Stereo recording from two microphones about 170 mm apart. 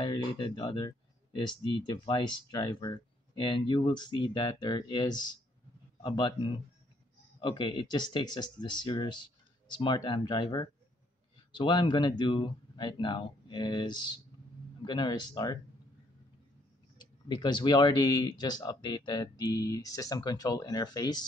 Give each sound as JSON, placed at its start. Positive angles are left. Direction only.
{"t": 0.0, "sound": "speech", "side_deg": 25}
{"t": 17.0, "sound": "speech", "side_deg": 25}